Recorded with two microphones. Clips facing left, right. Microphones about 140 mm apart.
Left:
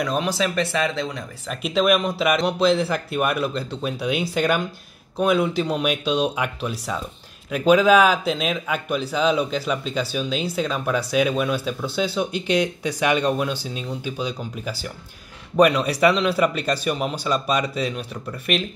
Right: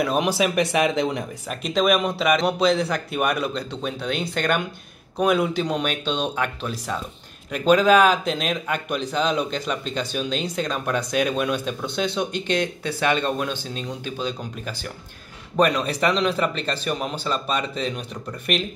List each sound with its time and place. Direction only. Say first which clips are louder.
0.0 s speech: right 2 dB; 10° right (ahead or behind)
1.5 s a man's voice: left 1 dB; centre (ahead or behind)